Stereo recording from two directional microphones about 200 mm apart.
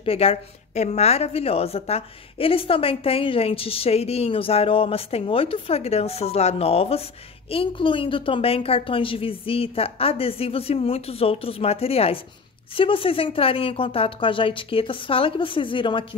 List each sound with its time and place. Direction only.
0.0 s a woman's voice: 30° left (ahead or behind)